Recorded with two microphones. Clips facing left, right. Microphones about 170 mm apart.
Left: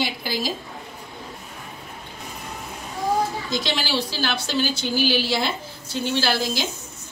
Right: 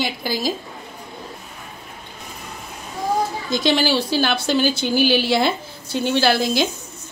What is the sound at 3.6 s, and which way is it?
Speech, 55° right (ahead or behind).